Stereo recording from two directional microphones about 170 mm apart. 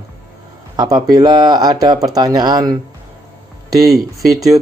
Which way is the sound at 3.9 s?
Centre (ahead or behind).